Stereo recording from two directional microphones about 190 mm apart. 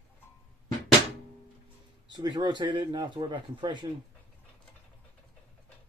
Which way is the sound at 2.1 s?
20° right (ahead or behind).